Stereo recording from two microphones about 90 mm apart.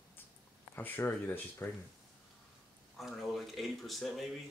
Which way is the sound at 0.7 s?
20° left (ahead or behind).